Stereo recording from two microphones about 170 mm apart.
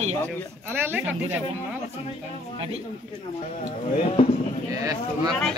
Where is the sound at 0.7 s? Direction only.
15° right (ahead or behind).